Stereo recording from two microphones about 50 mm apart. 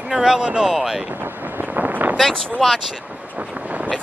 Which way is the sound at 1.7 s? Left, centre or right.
Right.